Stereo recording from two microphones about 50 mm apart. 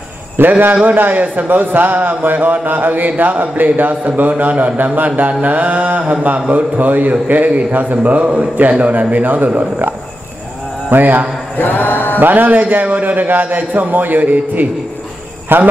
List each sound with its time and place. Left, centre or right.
0.5 s a man's voice: right
10.9 s a man's voice: right
11.5 s choir: left
12.2 s a man's voice: right
15.5 s a man's voice: right